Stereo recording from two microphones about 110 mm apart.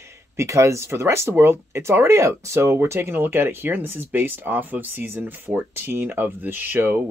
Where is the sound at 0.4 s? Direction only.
25° right (ahead or behind).